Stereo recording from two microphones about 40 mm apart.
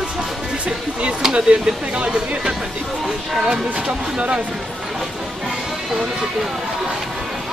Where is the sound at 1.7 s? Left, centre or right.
Right.